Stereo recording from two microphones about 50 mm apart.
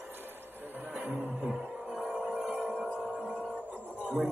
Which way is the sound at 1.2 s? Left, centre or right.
Centre.